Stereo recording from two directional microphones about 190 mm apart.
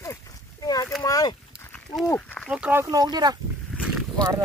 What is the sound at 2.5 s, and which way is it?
Speech, 5° right (ahead or behind).